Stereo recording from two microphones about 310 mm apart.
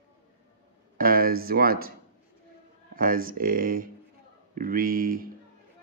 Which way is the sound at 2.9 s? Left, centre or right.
Right.